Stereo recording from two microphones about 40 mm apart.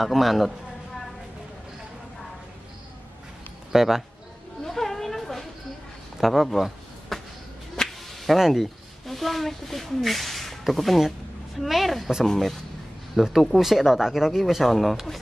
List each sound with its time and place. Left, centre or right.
0.0 s speech: centre
3.7 s speech: centre
4.6 s a sound: centre
7.8 s whip: centre
8.1 s a sound: centre
8.4 s speech: centre
13.2 s speech: centre